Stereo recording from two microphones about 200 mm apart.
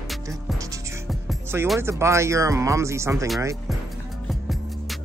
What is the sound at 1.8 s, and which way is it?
Speech, 15° right (ahead or behind).